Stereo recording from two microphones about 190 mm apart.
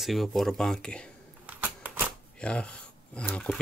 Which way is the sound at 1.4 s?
10° right (ahead or behind).